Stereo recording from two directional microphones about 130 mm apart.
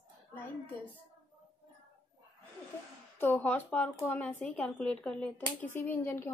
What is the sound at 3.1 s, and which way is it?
Speech, 15° left (ahead or behind).